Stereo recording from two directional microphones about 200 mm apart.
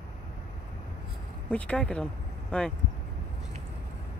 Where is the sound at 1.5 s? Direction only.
5° left (ahead or behind).